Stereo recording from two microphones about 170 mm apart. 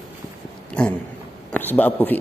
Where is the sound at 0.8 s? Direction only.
5° left (ahead or behind).